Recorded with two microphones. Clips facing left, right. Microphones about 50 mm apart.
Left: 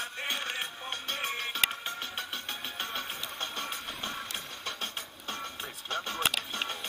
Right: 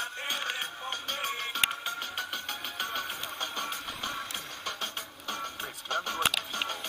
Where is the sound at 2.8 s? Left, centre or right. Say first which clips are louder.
Right 3 dB; left.